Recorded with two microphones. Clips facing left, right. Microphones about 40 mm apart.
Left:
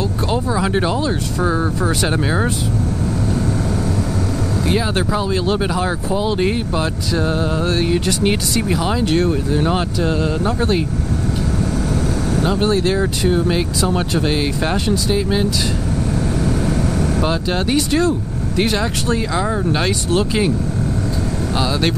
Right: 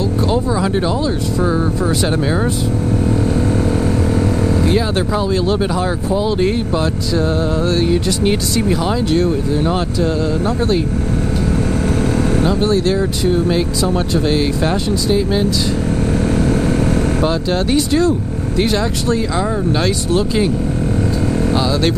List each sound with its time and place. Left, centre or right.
0.3 s speech: centre
1.8 s speech: left
2.0 s speech: centre
5.3 s speech: centre
9.9 s speech: left
12.6 s speech: left; by 15.4 s centre
17.3 s speech: centre
19.3 s speech: centre